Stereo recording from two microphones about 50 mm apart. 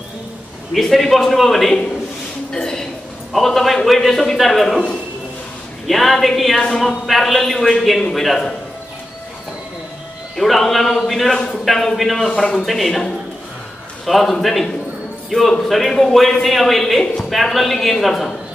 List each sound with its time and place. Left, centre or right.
0.7 s a man's voice: centre
5.9 s a man's voice: centre
10.3 s a man's voice: centre
11.3 s a man's voice: centre
14.0 s a man's voice: centre